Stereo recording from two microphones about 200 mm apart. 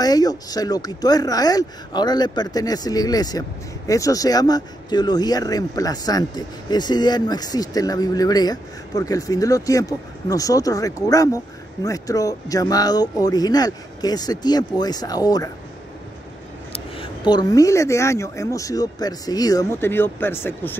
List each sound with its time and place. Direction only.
0.0 s speech: 20° left (ahead or behind)
16.7 s speech: 25° left (ahead or behind); by 20.7 s 10° left (ahead or behind)